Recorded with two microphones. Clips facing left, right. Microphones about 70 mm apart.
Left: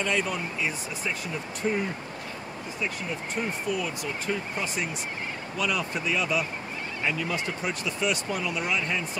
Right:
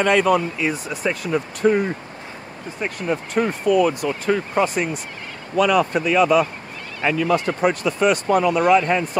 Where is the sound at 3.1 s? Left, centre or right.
Right.